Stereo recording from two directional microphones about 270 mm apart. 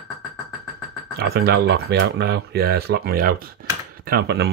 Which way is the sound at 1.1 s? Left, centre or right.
Right.